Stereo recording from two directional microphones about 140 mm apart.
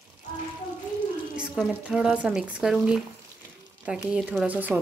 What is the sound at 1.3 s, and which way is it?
Speech, 5° right (ahead or behind).